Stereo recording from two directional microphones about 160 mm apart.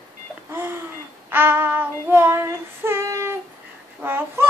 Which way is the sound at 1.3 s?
15° right (ahead or behind).